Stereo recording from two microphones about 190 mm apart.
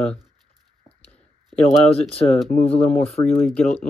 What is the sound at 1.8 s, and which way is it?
Speech, 30° left (ahead or behind).